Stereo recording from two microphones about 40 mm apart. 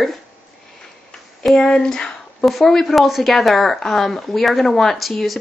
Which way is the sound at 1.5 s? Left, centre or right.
Centre.